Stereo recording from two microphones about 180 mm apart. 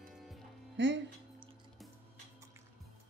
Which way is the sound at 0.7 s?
90° right.